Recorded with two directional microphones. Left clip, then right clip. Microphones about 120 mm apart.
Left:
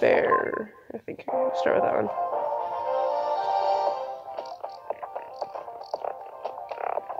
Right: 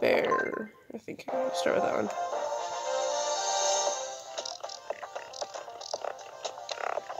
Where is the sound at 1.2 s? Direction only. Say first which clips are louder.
Left 5 dB; 60° right (ahead or behind).